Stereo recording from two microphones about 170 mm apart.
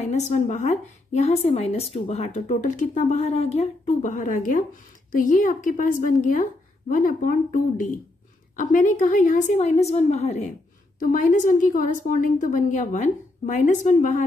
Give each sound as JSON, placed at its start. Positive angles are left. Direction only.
{"t": 0.1, "sound": "speech", "side_deg": 45}